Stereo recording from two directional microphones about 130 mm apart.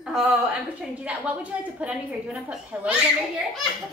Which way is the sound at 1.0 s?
10° right (ahead or behind).